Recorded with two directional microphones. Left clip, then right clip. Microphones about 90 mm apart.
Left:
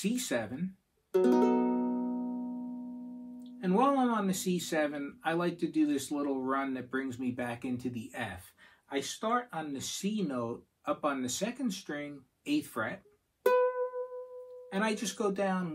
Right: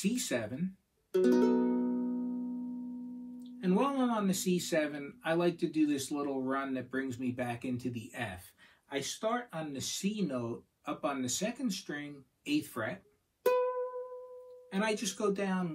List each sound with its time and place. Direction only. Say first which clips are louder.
0.0 s speech: left 1 dB; 25° left (ahead or behind)
1.1 s music: left 1 dB; 25° left (ahead or behind)
3.5 s speech: left 4 dB; 25° left (ahead or behind)
13.4 s music: left 3 dB; 20° left (ahead or behind)
14.7 s speech: left 1 dB; 25° left (ahead or behind)